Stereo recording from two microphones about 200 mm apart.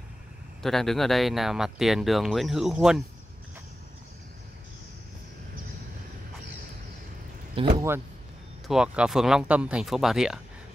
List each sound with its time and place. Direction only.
0.6 s speech: centre (ahead or behind)
7.5 s speech: 20° right (ahead or behind)
8.6 s speech: 5° right (ahead or behind)